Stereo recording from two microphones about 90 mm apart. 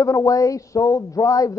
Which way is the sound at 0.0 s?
35° left (ahead or behind).